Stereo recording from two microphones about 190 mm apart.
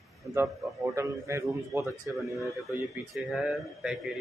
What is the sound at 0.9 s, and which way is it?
A man's voice, 15° right (ahead or behind).